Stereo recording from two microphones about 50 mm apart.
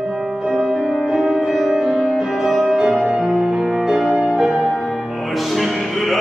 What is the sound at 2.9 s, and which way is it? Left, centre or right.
Music, centre.